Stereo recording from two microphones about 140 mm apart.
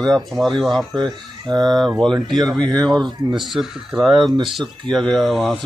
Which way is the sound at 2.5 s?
30° right (ahead or behind).